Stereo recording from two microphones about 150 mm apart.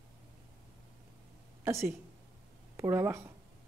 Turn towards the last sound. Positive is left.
turn(degrees=-20)  # may be behind; listen again after turning